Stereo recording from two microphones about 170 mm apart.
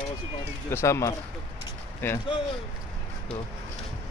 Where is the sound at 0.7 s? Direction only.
15° left (ahead or behind).